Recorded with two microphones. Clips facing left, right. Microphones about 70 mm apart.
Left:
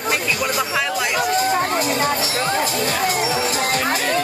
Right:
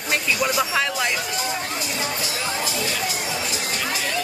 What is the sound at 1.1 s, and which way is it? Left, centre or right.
Music, left.